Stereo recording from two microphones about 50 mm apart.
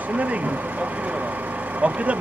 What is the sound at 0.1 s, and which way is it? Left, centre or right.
A man's voice, right.